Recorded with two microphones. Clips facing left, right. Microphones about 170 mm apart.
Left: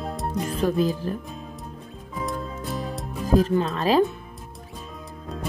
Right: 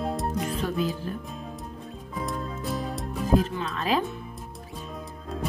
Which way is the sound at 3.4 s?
45° left (ahead or behind).